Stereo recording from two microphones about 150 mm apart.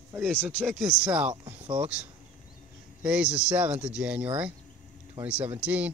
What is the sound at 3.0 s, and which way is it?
Speech, 5° right (ahead or behind).